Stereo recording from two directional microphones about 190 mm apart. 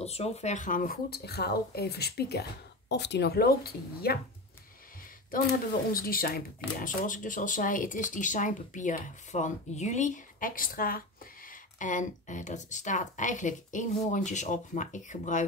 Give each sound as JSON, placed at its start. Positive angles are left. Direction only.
{"t": 0.0, "sound": "speech", "side_deg": 35}
{"t": 5.3, "sound": "speech", "side_deg": 50}